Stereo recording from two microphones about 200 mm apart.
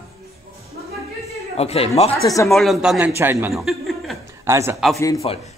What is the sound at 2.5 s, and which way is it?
A man's voice, centre (ahead or behind).